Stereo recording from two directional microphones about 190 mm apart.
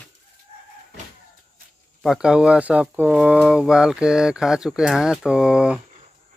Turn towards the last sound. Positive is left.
turn(degrees=-5)  # may be behind; listen again after turning